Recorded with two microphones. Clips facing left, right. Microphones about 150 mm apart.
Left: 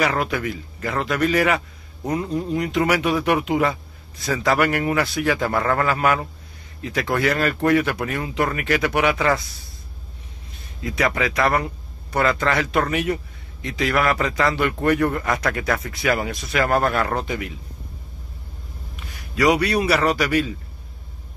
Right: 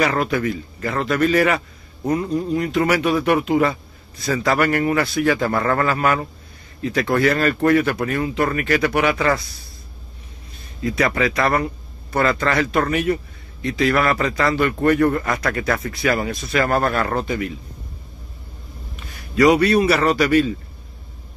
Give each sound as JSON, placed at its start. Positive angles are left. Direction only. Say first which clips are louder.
{"t": 0.0, "sound": "a man's voice", "louder": "right 3 dB", "side_deg": 10}
{"t": 10.8, "sound": "a man's voice", "louder": "right 3 dB", "side_deg": 15}
{"t": 19.3, "sound": "a man's voice", "louder": "right 4 dB", "side_deg": 10}